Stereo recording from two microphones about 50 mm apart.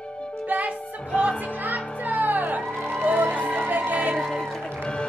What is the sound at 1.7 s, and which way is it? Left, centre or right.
Music, right.